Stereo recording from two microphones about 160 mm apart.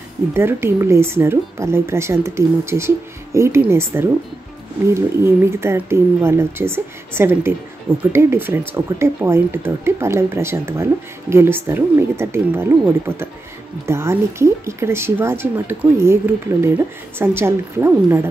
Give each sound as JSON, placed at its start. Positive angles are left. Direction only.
{"t": 0.3, "sound": "speech", "side_deg": -15}